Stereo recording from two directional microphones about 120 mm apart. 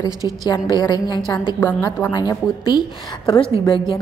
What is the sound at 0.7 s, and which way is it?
Speech, 35° left (ahead or behind).